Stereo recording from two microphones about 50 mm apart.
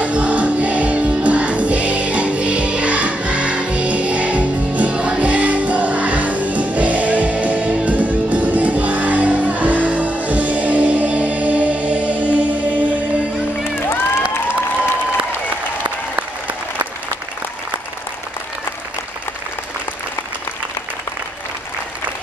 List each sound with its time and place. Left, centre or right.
0.0 s music: right
15.8 s applause: right